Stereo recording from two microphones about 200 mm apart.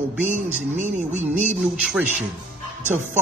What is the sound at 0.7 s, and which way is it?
Music, 35° right (ahead or behind).